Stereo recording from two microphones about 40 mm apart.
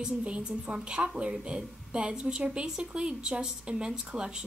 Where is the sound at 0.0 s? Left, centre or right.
Right.